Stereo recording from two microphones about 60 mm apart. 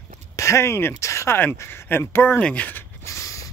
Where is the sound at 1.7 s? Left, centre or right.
Left.